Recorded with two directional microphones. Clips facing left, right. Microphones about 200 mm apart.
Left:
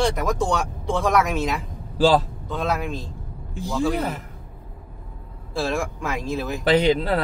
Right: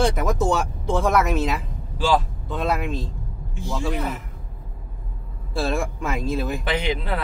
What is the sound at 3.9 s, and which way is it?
Speech, 35° left (ahead or behind).